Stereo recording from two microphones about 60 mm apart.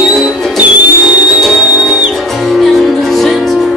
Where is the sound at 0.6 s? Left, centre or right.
Right.